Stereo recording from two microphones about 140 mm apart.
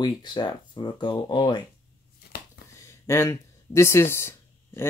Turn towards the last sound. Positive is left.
turn(degrees=20)  # may be behind; listen again after turning